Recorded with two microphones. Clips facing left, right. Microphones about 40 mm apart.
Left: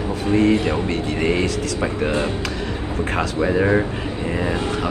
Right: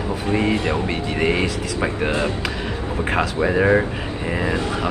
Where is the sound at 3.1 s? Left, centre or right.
Centre.